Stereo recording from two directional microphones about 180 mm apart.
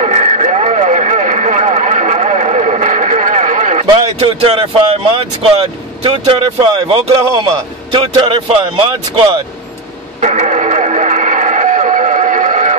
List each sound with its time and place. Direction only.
0.0 s radio: 40° right (ahead or behind)
4.2 s speech: 30° right (ahead or behind)
7.2 s a man's voice: 15° right (ahead or behind)
8.0 s speech: 25° right (ahead or behind)
10.2 s a sound: 40° right (ahead or behind)